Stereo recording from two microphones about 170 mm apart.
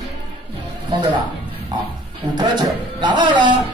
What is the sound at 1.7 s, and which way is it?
A man's voice, 25° right (ahead or behind).